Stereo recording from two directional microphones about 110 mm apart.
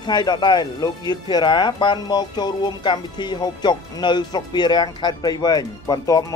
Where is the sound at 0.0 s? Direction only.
40° left (ahead or behind).